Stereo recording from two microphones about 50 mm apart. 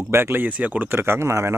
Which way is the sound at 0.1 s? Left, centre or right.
Right.